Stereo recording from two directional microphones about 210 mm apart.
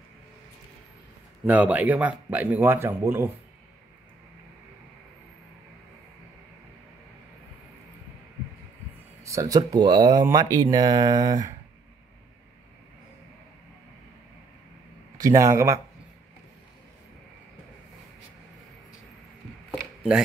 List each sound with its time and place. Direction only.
1.4 s speech: 5° right (ahead or behind)
9.2 s speech: 15° right (ahead or behind)
15.1 s speech: 15° right (ahead or behind)
19.7 s chopping: centre (ahead or behind)